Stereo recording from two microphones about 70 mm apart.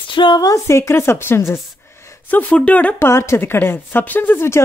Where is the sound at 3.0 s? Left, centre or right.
Left.